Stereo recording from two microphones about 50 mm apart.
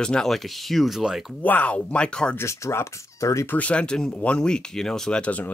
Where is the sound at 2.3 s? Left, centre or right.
Left.